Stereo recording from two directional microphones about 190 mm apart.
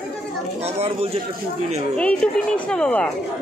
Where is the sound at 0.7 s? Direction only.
35° right (ahead or behind).